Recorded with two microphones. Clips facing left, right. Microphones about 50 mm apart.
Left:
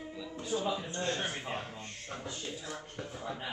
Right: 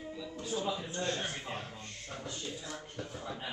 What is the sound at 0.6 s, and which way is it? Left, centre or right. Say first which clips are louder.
Speech: left 1 dB; centre.